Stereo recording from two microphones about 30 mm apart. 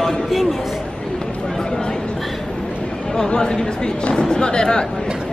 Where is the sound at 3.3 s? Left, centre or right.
Left.